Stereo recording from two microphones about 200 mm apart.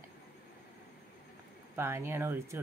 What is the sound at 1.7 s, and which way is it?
Speech, 10° right (ahead or behind).